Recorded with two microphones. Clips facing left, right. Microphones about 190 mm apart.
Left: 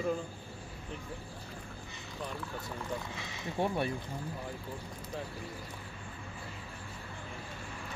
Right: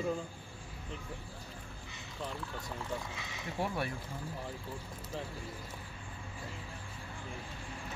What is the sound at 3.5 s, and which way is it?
Speech, 25° left (ahead or behind).